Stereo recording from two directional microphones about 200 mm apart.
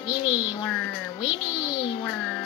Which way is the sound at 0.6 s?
Centre (ahead or behind).